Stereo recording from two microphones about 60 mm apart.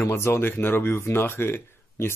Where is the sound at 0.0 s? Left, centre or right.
Left.